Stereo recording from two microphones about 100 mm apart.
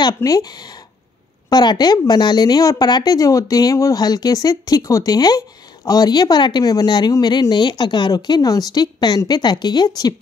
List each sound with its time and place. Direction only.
0.0 s speech: 35° left (ahead or behind)